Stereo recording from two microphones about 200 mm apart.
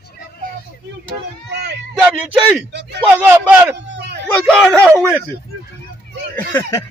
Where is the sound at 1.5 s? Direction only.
60° right (ahead or behind).